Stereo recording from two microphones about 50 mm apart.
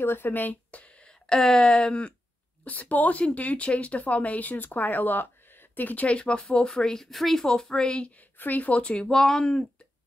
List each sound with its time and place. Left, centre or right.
0.0 s speech: left
0.7 s a sound: left
1.4 s a woman's voice: centre; by 6.0 s left
6.0 s a woman's voice: left
6.7 s speech: centre
8.2 s speech: left
8.8 s speech: centre